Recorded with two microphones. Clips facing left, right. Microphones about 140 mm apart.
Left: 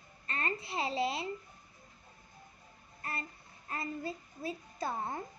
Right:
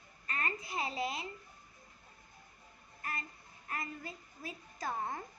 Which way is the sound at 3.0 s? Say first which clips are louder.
Left 2 dB; 30° left (ahead or behind).